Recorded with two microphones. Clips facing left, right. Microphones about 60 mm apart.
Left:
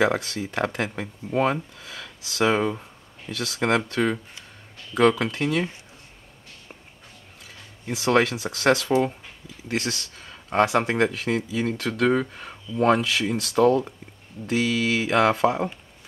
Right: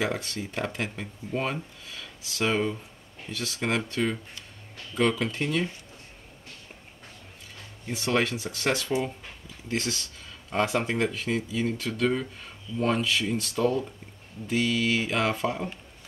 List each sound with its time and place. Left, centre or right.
0.0 s speech: left
7.9 s speech: left
9.7 s speech: left
10.1 s a sound: left
10.6 s speech: left
12.9 s speech: left
14.4 s speech: left